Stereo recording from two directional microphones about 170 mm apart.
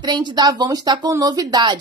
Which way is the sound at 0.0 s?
25° right (ahead or behind).